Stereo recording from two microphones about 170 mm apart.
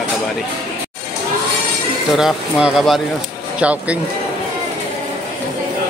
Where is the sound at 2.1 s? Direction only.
Centre (ahead or behind).